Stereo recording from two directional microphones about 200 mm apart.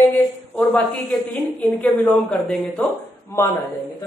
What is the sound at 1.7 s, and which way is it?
Speech, 10° left (ahead or behind).